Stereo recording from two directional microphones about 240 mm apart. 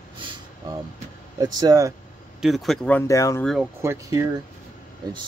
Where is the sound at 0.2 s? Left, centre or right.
Centre.